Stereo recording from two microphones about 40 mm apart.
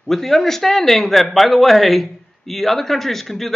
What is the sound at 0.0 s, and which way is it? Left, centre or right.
A man's voice, centre.